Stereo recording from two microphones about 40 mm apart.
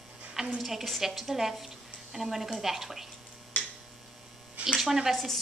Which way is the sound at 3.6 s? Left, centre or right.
Left.